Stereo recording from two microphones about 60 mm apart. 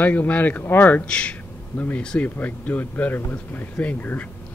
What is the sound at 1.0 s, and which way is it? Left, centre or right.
Speech, centre.